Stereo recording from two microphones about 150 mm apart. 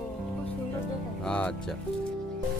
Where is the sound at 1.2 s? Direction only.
5° left (ahead or behind).